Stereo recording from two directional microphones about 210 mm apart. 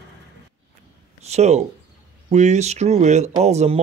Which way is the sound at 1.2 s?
30° right (ahead or behind).